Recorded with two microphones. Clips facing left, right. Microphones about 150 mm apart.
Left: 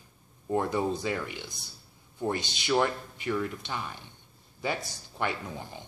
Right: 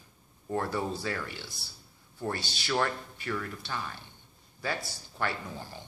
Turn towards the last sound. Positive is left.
turn(degrees=20)  # may be behind; listen again after turning